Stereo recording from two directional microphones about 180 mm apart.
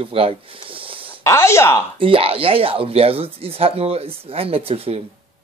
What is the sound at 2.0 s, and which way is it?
Speech, 30° right (ahead or behind).